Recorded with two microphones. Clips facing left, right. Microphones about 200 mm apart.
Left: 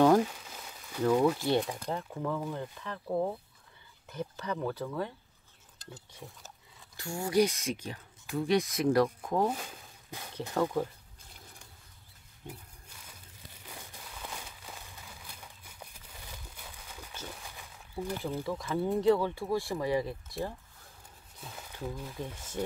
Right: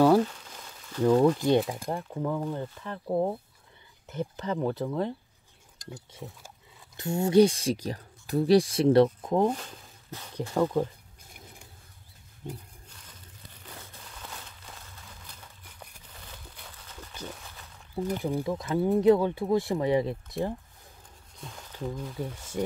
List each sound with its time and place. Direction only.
0.2 s a sound: 5° left (ahead or behind)
1.1 s speech: 10° left (ahead or behind)
1.7 s speech: 10° right (ahead or behind)
6.2 s speech: 20° right (ahead or behind)
9.5 s speech: 5° left (ahead or behind)
10.5 s speech: 15° right (ahead or behind)
12.4 s a sound: 10° left (ahead or behind)
17.9 s speech: 15° right (ahead or behind)
21.4 s a sound: 5° left (ahead or behind)
21.8 s speech: 5° left (ahead or behind)